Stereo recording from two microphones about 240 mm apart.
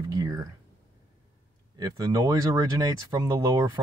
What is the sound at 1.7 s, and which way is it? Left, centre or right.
Speech, centre.